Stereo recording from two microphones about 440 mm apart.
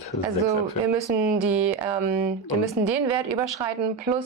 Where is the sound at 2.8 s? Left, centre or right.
Right.